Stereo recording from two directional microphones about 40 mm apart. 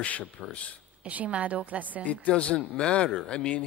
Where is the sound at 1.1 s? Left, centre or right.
Right.